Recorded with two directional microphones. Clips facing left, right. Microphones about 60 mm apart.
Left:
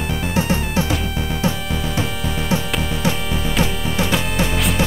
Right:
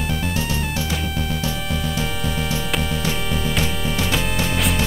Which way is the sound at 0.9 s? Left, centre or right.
Centre.